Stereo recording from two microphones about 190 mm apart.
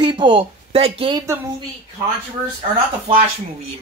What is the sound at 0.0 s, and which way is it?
Speech, 25° right (ahead or behind).